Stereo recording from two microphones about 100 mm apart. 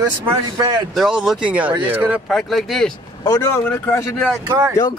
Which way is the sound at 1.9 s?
20° right (ahead or behind).